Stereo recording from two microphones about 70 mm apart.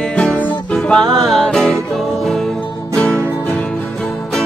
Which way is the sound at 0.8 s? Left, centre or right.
Centre.